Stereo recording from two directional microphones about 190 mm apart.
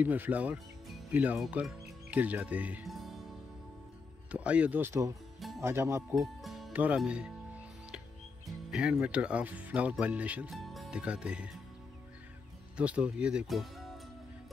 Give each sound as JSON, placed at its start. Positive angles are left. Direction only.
{"t": 0.0, "sound": "speech", "side_deg": -10}
{"t": 4.3, "sound": "speech", "side_deg": -5}
{"t": 6.1, "sound": "speech", "side_deg": 0}
{"t": 8.5, "sound": "speech", "side_deg": -5}
{"t": 12.7, "sound": "speech", "side_deg": -5}